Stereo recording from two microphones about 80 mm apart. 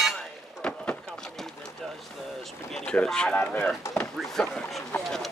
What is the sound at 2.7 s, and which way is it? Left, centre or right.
Speech, centre.